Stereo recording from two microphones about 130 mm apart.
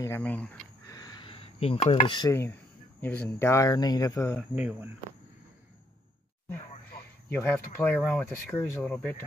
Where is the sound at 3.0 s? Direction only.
15° left (ahead or behind).